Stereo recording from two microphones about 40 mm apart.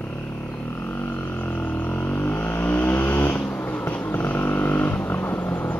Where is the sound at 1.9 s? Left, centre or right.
Left.